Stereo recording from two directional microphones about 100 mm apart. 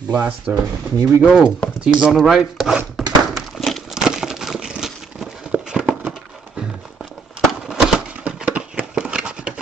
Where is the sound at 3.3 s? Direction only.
Centre (ahead or behind).